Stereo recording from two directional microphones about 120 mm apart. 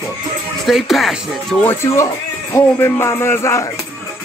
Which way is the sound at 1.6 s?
20° left (ahead or behind).